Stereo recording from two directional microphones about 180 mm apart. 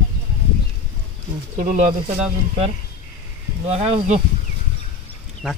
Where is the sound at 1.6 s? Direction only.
45° right (ahead or behind).